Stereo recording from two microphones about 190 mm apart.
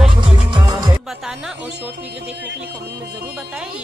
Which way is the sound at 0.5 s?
20° right (ahead or behind).